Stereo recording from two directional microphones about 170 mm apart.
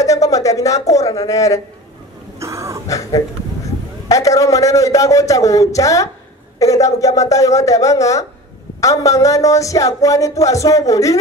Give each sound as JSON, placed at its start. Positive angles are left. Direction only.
{"t": 0.0, "sound": "speech", "side_deg": 20}
{"t": 2.3, "sound": "throat clearing", "side_deg": -15}
{"t": 2.9, "sound": "a sound", "side_deg": 20}